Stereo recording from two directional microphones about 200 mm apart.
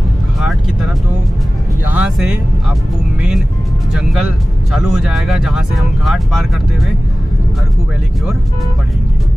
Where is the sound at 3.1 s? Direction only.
5° right (ahead or behind).